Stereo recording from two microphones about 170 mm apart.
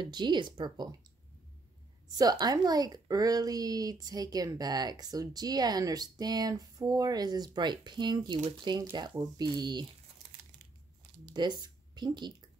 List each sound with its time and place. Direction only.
0.0 s a woman's voice: 25° right (ahead or behind)
2.1 s a woman's voice: 20° right (ahead or behind)
11.3 s speech: 25° right (ahead or behind)